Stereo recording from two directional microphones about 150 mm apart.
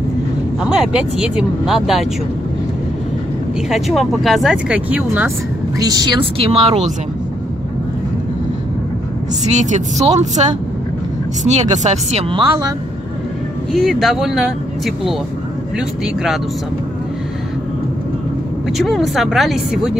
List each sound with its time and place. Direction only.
0.7 s speech: 5° right (ahead or behind)
3.7 s speech: centre (ahead or behind)
5.8 s a woman's voice: 25° right (ahead or behind)
6.3 s speech: 40° right (ahead or behind)
9.5 s speech: 50° right (ahead or behind); by 12.7 s 30° right (ahead or behind)
13.7 s speech: centre (ahead or behind)
18.8 s speech: centre (ahead or behind)